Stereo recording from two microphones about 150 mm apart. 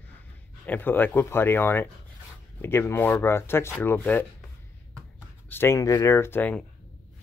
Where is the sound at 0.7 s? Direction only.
15° left (ahead or behind).